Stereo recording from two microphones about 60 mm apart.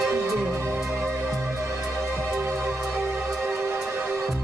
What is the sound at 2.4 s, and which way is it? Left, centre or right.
Music, right.